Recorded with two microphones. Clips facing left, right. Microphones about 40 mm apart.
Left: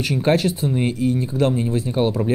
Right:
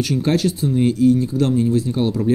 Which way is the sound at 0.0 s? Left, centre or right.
Left.